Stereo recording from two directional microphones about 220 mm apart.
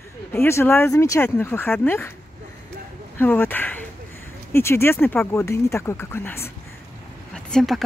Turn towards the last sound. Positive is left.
turn(degrees=0)  # may be behind; listen again after turning